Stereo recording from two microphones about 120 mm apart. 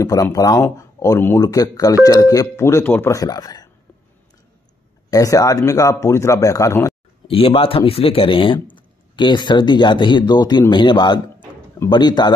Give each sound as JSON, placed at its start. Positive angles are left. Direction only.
{"t": 0.0, "sound": "speech", "side_deg": 25}
{"t": 5.1, "sound": "speech", "side_deg": 30}
{"t": 7.2, "sound": "speech", "side_deg": 50}